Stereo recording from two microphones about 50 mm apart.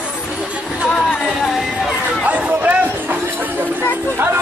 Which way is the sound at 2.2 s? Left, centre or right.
Right.